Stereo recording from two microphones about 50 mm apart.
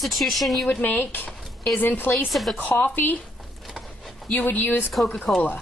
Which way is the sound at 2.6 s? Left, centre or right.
Left.